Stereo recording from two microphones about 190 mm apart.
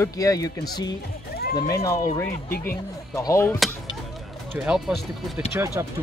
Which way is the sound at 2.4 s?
50° left (ahead or behind).